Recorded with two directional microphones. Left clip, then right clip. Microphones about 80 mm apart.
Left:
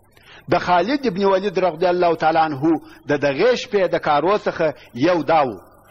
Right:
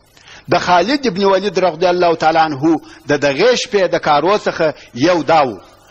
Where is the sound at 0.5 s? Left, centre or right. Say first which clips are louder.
Right 5 dB; left.